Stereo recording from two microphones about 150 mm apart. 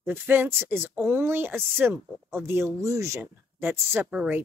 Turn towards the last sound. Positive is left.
turn(degrees=-10)  # may be behind; listen again after turning